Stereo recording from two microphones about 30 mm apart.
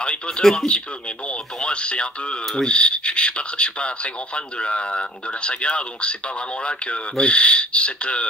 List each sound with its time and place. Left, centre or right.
0.0 s speech: left
0.4 s speech: centre
1.6 s speech: left